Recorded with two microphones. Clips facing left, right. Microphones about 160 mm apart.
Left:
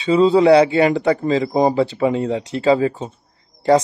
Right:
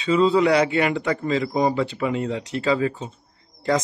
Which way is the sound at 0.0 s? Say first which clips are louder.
Left 5 dB; 30° left (ahead or behind).